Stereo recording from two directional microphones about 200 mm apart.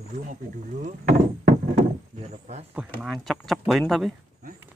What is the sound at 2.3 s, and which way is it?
Speech, 35° right (ahead or behind).